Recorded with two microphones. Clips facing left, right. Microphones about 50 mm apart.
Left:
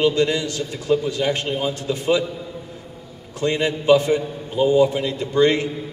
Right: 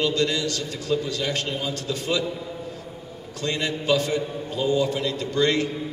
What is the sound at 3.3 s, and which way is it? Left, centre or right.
A man's voice, left.